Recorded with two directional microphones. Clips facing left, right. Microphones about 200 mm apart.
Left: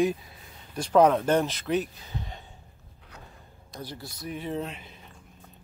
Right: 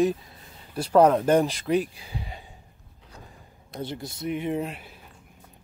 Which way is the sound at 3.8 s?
25° right (ahead or behind).